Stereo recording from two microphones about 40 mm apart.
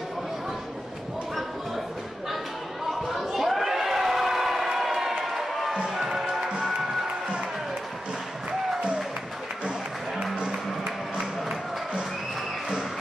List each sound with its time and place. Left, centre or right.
2.9 s a sound: centre
5.2 s music: centre
10.1 s music: centre